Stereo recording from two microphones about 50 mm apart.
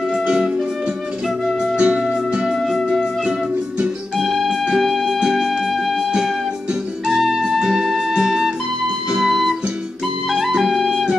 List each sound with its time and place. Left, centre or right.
0.2 s music: centre
1.8 s music: right
2.5 s music: centre
3.3 s music: centre
4.2 s music: centre
6.1 s music: centre
7.1 s music: centre